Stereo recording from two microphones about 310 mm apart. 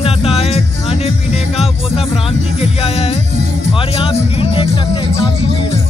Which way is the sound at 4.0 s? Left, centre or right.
Centre.